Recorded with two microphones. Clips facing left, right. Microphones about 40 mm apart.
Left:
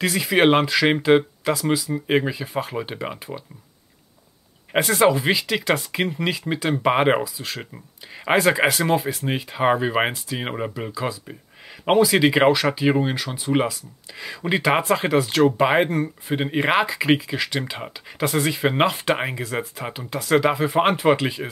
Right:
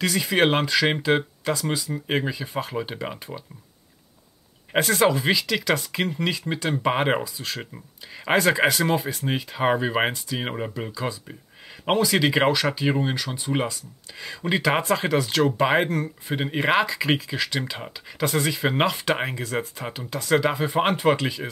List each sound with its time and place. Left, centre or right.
0.0 s speech: centre
4.8 s speech: centre
5.3 s speech: centre
5.9 s speech: centre
8.3 s speech: centre
15.8 s speech: centre
16.3 s speech: centre